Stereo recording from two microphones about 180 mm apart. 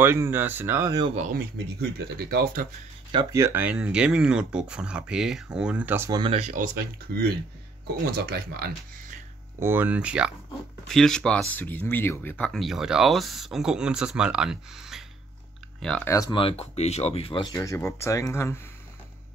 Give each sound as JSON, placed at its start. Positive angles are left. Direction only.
{"t": 0.0, "sound": "speech", "side_deg": -15}
{"t": 1.3, "sound": "speech", "side_deg": -60}
{"t": 3.1, "sound": "speech", "side_deg": -20}
{"t": 6.5, "sound": "speech", "side_deg": -50}
{"t": 9.6, "sound": "speech", "side_deg": -10}
{"t": 16.1, "sound": "speech", "side_deg": 20}
{"t": 16.3, "sound": "speech", "side_deg": 35}